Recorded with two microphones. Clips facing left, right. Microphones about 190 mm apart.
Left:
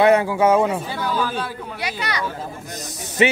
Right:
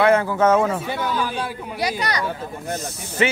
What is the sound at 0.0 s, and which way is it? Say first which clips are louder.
Speech: left 1 dB; 15° left (ahead or behind).